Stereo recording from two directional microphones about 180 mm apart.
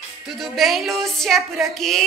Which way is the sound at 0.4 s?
Centre (ahead or behind).